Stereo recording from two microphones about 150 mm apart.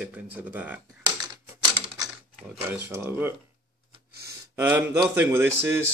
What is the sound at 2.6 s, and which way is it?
Speech, 15° right (ahead or behind).